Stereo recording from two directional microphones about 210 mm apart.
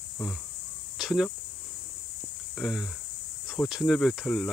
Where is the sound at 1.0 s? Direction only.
Centre (ahead or behind).